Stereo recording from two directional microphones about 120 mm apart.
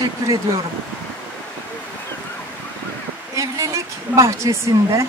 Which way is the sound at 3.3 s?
25° right (ahead or behind).